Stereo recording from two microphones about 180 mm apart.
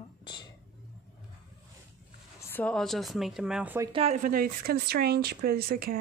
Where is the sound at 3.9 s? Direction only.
35° right (ahead or behind).